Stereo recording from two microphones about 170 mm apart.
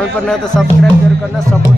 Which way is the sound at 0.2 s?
5° left (ahead or behind).